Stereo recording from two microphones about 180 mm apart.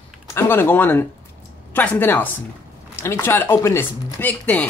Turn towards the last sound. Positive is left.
turn(degrees=10)  # may be behind; listen again after turning